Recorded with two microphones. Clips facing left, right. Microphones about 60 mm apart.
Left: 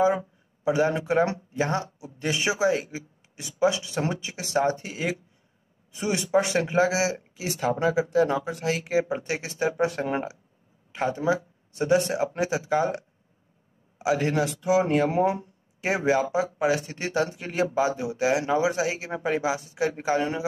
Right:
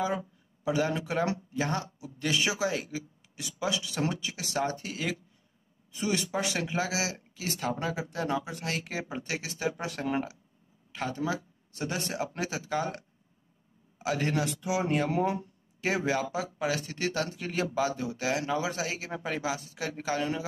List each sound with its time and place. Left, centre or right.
0.0 s speech: left
7.9 s speech: centre; by 13.0 s left
13.9 s speech: centre